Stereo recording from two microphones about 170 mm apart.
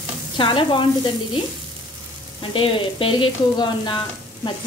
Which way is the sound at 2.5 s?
30° left (ahead or behind).